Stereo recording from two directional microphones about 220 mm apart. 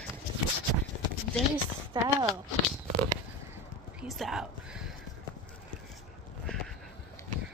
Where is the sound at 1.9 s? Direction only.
20° right (ahead or behind).